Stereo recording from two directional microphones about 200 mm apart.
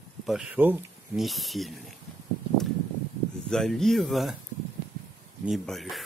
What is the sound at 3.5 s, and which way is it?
Speech, centre (ahead or behind).